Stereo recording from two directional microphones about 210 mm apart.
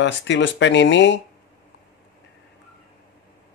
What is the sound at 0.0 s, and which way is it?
Speech, 60° left (ahead or behind).